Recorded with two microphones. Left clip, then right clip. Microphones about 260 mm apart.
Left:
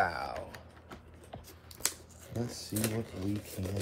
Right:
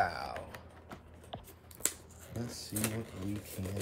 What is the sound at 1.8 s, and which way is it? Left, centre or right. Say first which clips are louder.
Scissors: left 2 dB; centre.